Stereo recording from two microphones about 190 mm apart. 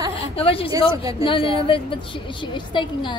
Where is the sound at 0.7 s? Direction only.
20° right (ahead or behind).